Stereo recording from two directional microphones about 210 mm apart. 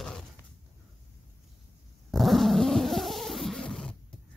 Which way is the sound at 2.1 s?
Centre (ahead or behind).